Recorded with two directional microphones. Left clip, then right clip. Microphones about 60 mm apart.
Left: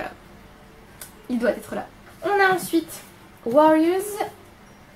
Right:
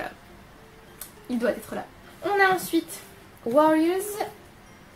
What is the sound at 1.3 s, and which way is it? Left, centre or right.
A woman's voice, centre.